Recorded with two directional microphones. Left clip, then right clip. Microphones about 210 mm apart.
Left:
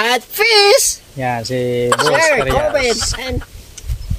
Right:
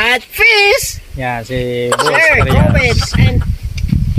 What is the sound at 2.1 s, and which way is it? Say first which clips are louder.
Speech: right 5 dB; 25° left (ahead or behind).